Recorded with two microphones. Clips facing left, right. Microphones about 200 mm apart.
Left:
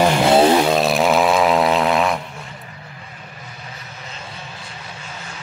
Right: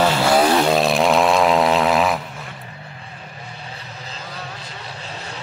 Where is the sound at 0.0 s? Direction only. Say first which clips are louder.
Left 3 dB; 15° left (ahead or behind).